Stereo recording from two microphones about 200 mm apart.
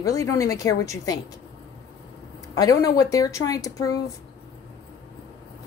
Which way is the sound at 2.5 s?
15° left (ahead or behind).